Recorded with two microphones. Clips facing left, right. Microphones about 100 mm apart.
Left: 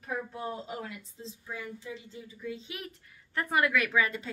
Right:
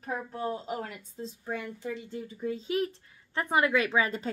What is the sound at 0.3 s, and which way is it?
Speech, 40° right (ahead or behind).